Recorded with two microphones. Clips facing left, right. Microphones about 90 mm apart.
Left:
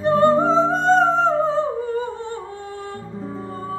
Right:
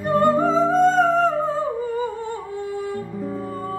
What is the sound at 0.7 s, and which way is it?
Music, 30° left (ahead or behind).